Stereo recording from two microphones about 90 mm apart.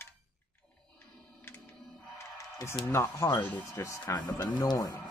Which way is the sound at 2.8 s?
20° left (ahead or behind).